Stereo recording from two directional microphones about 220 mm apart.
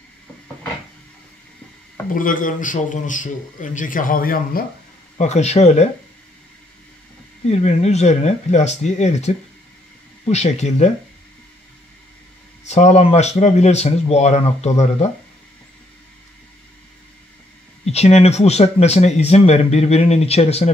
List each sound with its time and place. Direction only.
2.0 s a man's voice: 40° left (ahead or behind)
5.1 s a man's voice: 30° left (ahead or behind)
7.4 s a man's voice: 30° left (ahead or behind)
12.6 s a man's voice: 30° left (ahead or behind)
17.8 s speech: 30° left (ahead or behind)